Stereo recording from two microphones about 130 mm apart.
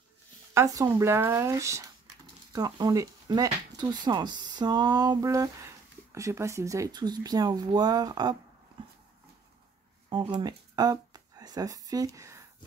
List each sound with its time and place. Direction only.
0.6 s speech: 25° right (ahead or behind)
10.0 s speech: 35° right (ahead or behind)